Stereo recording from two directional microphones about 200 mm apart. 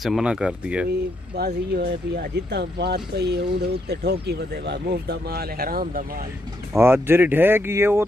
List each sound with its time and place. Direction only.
0.0 s speech: 5° right (ahead or behind)
1.3 s speech: 55° right (ahead or behind)
6.7 s speech: 10° right (ahead or behind)